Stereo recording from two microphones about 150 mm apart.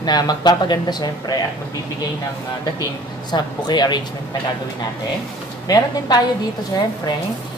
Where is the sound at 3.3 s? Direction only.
30° left (ahead or behind).